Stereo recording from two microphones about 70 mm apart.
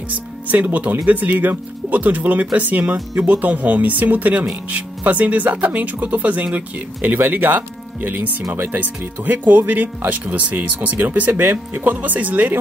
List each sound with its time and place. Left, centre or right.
0.5 s speech: right